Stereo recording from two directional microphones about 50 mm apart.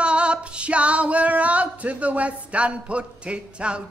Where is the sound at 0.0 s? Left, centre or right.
Right.